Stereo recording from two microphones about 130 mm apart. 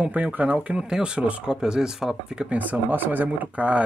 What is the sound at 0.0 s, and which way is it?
Speech, 10° right (ahead or behind).